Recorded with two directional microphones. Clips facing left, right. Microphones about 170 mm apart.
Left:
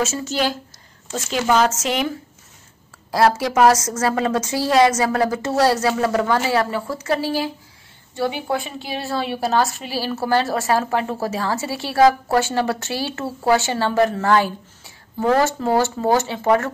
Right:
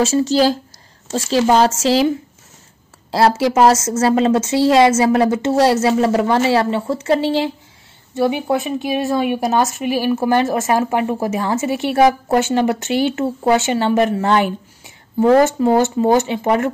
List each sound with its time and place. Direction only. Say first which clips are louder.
0.0 s a woman's voice: right 8 dB; 35° right (ahead or behind); by 16.7 s 20° right (ahead or behind)